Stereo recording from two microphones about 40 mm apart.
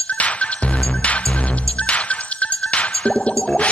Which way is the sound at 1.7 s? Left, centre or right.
Left.